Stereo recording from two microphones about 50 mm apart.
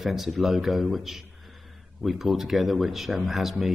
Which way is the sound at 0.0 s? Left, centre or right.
Centre.